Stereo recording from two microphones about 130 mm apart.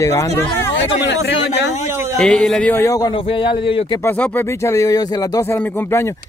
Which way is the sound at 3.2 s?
40° left (ahead or behind).